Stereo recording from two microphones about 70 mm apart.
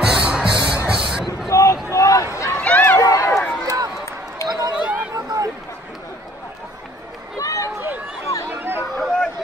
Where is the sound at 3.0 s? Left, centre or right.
Left.